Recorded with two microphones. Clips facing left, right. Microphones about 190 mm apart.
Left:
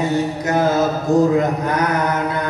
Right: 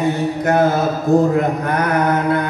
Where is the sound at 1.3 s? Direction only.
55° right (ahead or behind).